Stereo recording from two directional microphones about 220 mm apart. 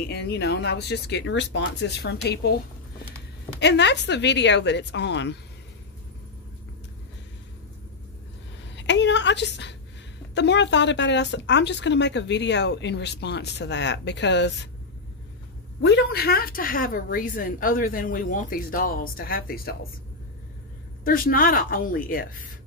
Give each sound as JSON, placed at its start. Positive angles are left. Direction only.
{"t": 0.0, "sound": "speech", "side_deg": 45}
{"t": 3.5, "sound": "speech", "side_deg": 50}
{"t": 8.7, "sound": "a sound", "side_deg": 55}
{"t": 10.3, "sound": "speech", "side_deg": 50}
{"t": 15.8, "sound": "a woman's voice", "side_deg": 50}
{"t": 21.0, "sound": "a woman's voice", "side_deg": 40}